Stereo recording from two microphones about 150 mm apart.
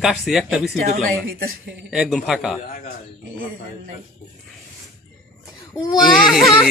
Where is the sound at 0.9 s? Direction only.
65° right (ahead or behind).